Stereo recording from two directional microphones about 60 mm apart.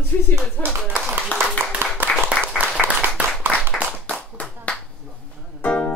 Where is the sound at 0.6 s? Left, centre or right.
Right.